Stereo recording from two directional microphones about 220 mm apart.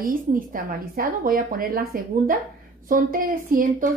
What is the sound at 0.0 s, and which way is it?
A woman's voice, 40° right (ahead or behind).